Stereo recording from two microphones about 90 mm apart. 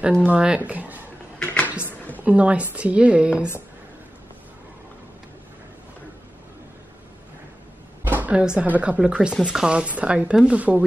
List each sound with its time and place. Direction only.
0.3 s speech: 15° right (ahead or behind)
1.4 s a sound: 15° left (ahead or behind)
2.2 s speech: 15° right (ahead or behind)
8.0 s speech: 20° right (ahead or behind)